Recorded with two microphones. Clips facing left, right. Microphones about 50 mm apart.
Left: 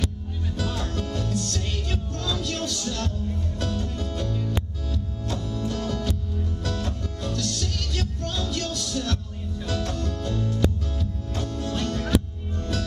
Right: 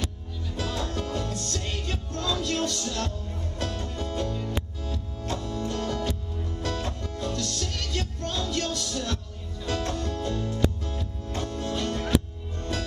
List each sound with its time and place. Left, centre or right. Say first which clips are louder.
0.6 s music: even; centre
9.9 s music: even; right
10.2 s music: left 2 dB; centre